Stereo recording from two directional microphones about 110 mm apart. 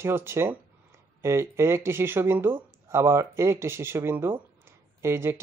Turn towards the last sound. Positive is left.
turn(degrees=-25)  # may be behind; listen again after turning